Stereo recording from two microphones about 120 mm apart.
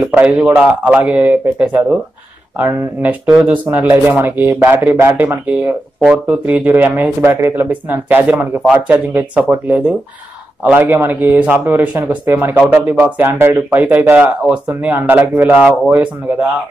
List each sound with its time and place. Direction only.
0.0 s speech: 15° right (ahead or behind)